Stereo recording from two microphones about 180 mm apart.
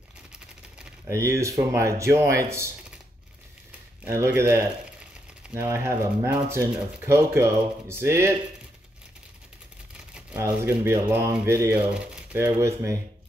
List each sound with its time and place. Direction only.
1.0 s speech: 15° right (ahead or behind)
4.0 s speech: 15° right (ahead or behind)
9.9 s shuffling cards: 5° right (ahead or behind)
10.4 s speech: 15° right (ahead or behind)